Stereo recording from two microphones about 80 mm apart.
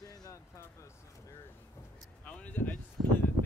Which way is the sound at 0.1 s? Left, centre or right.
Left.